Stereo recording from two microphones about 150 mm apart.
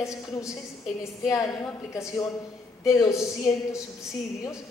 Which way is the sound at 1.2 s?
20° left (ahead or behind).